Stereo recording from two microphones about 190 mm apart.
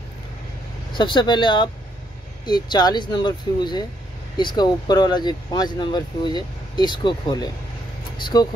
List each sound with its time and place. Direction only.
0.9 s speech: 25° left (ahead or behind)